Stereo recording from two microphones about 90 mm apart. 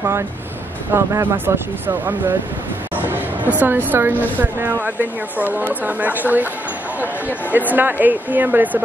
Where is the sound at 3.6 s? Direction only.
20° right (ahead or behind).